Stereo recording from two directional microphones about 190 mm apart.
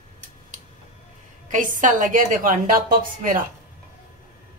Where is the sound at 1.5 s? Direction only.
40° right (ahead or behind).